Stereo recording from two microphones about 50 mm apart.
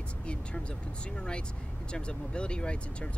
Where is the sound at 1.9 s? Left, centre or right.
Centre.